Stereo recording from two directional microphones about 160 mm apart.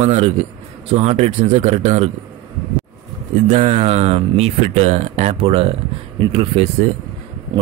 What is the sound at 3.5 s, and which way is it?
Speech, 45° right (ahead or behind).